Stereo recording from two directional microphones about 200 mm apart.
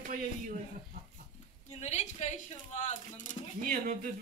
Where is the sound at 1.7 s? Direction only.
35° left (ahead or behind).